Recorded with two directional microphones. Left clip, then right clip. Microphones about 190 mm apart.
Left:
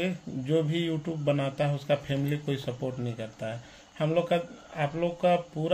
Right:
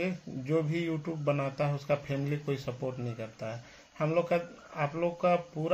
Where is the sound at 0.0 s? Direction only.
15° left (ahead or behind).